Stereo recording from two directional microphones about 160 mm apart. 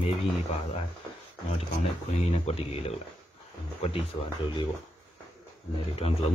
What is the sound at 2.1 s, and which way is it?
Speech, 40° left (ahead or behind).